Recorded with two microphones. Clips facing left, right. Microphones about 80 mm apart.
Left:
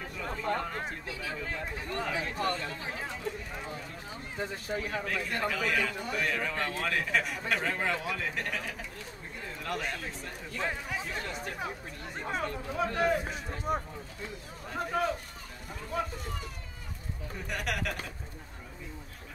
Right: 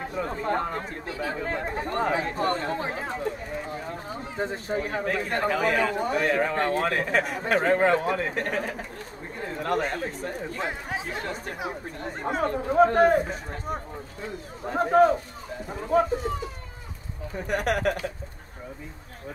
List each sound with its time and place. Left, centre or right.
0.0 s speech: right
14.7 s speech: right
17.5 s speech: right